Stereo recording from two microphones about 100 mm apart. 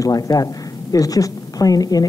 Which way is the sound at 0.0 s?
35° left (ahead or behind).